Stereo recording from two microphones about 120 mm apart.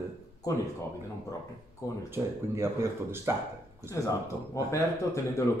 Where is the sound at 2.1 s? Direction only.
20° right (ahead or behind).